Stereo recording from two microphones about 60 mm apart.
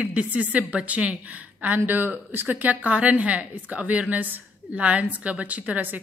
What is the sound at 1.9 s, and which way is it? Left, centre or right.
A woman's voice, right.